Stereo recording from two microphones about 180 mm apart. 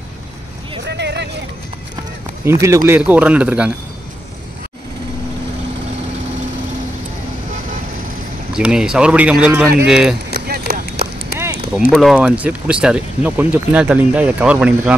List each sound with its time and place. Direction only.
0.8 s a sound: 70° right (ahead or behind)
2.6 s speech: 15° right (ahead or behind)
8.5 s speech: 5° right (ahead or behind)
10.3 s a sound: 60° right (ahead or behind)
11.0 s clip-clop: 60° left (ahead or behind)
11.9 s speech: centre (ahead or behind)